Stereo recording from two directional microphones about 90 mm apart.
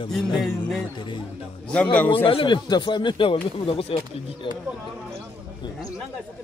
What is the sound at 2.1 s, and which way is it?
Speech, 80° left.